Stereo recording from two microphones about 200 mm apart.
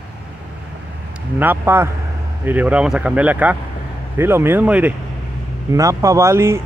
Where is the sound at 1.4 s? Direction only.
10° right (ahead or behind).